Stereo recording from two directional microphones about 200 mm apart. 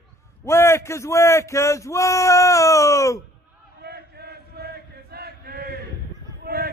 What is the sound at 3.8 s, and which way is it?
Chant, 55° right (ahead or behind).